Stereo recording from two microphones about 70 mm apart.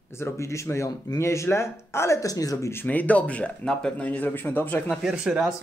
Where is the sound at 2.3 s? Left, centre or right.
Left.